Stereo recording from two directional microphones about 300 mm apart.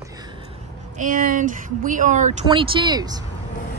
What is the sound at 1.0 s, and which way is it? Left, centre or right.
Speech, right.